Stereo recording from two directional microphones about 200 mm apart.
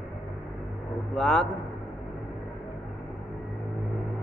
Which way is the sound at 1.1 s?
5° left (ahead or behind).